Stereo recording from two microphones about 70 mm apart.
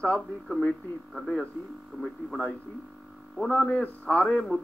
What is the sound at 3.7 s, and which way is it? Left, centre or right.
Speech, left.